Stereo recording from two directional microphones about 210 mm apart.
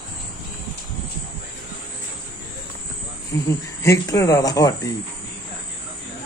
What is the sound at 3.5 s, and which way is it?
Speech, 15° left (ahead or behind).